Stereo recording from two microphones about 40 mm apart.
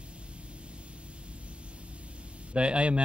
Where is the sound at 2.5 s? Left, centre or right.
Right.